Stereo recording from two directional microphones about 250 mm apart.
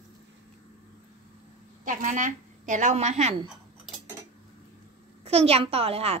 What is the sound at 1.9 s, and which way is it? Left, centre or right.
A woman's voice, right.